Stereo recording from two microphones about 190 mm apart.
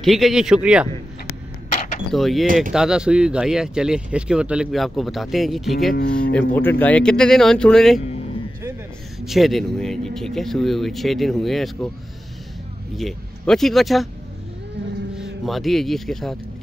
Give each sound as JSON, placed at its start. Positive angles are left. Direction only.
{"t": 0.0, "sound": "speech", "side_deg": 0}
{"t": 2.1, "sound": "speech", "side_deg": 0}
{"t": 2.4, "sound": "speech", "side_deg": -45}
{"t": 2.7, "sound": "speech", "side_deg": -5}
{"t": 9.2, "sound": "speech", "side_deg": 0}
{"t": 12.9, "sound": "speech", "side_deg": 0}
{"t": 15.1, "sound": "speech", "side_deg": 0}